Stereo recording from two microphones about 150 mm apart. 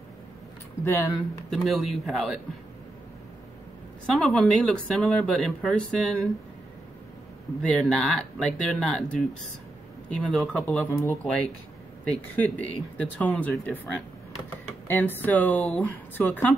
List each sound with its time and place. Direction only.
0.8 s speech: 15° left (ahead or behind)
1.5 s speech: centre (ahead or behind)
4.0 s speech: 5° left (ahead or behind)
7.6 s speech: centre (ahead or behind)
12.0 s speech: 10° left (ahead or behind)